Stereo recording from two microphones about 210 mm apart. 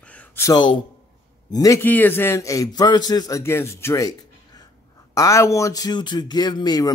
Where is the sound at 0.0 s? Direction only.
5° left (ahead or behind).